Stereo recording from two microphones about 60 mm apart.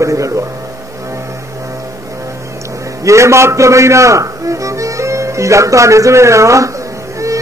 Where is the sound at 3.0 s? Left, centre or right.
Right.